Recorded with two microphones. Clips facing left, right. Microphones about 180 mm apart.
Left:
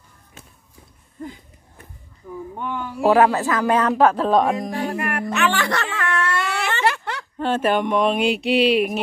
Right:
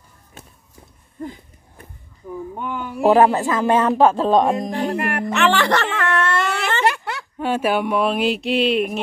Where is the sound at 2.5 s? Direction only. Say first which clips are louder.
Left 1 dB; 15° right (ahead or behind).